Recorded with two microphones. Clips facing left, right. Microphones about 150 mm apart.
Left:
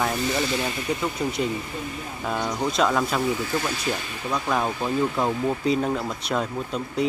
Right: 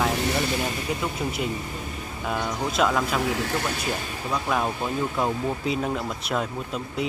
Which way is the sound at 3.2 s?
75° right (ahead or behind).